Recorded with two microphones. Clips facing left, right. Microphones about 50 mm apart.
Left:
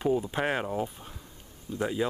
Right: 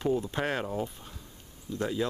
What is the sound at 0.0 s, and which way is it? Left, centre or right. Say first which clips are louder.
Speech: left 2 dB; centre.